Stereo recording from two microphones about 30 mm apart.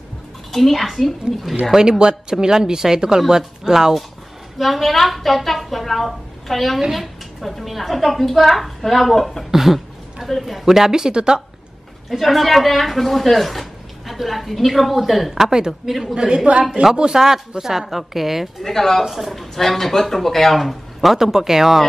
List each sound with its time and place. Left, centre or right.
0.5 s a woman's voice: centre
1.8 s a woman's voice: right
4.6 s a woman's voice: centre
9.5 s a woman's voice: centre
10.2 s a woman's voice: centre
10.9 s speech: right
12.1 s a woman's voice: centre
16.9 s speech: right
17.6 s a woman's voice: centre
18.6 s speech: centre
19.0 s a woman's voice: centre
21.2 s a woman's voice: centre